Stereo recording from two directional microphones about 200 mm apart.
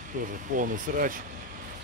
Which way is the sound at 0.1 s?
40° right (ahead or behind).